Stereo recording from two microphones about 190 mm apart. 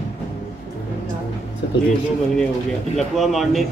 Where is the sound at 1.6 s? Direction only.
65° left (ahead or behind).